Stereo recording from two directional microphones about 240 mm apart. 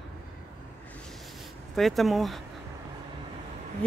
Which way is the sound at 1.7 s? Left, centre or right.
Centre.